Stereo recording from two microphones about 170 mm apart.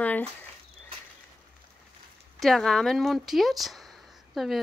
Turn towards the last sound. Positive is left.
turn(degrees=0)  # may be behind; listen again after turning